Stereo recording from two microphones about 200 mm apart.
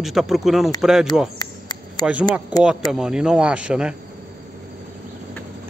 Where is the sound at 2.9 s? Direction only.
5° right (ahead or behind).